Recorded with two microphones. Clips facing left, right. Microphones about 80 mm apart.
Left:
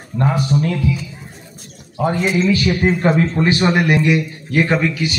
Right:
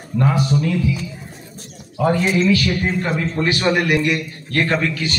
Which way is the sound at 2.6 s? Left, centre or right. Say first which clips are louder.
Left 5 dB; left.